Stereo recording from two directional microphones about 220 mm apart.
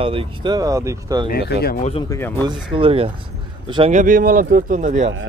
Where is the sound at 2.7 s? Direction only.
25° right (ahead or behind).